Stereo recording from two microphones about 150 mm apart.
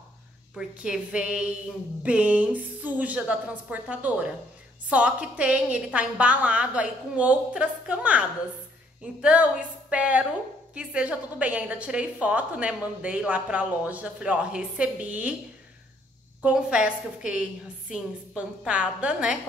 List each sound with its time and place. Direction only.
0.6 s a woman's voice: 5° right (ahead or behind)
16.4 s a woman's voice: 5° right (ahead or behind)